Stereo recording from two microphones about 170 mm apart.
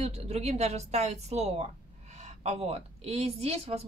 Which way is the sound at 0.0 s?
40° right (ahead or behind).